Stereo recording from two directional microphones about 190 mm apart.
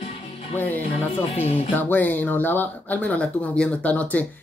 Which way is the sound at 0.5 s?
10° left (ahead or behind).